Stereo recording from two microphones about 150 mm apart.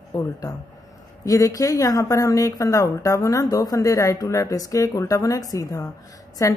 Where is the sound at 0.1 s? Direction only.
25° left (ahead or behind).